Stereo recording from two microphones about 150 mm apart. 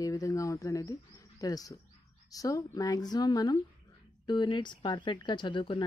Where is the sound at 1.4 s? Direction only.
25° left (ahead or behind).